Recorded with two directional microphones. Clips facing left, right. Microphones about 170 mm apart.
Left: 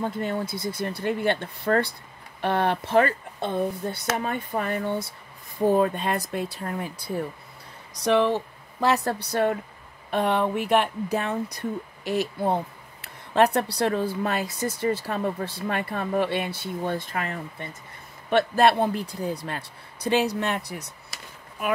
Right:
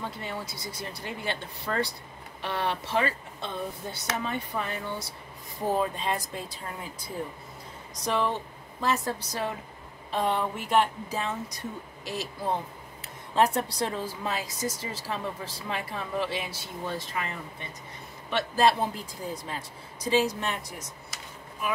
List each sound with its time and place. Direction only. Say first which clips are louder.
0.0 s speech: left 8 dB; 50° left (ahead or behind)